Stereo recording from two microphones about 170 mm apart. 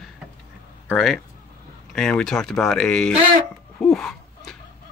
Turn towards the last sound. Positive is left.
turn(degrees=0)  # may be behind; listen again after turning